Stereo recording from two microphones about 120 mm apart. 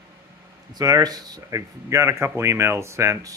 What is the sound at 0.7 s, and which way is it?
Speech, 30° right (ahead or behind).